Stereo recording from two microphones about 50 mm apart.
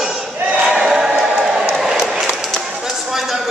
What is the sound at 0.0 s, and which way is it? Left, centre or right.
Battle cry, centre.